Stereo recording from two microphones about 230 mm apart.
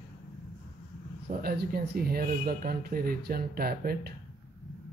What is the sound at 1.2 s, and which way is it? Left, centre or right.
Speech, right.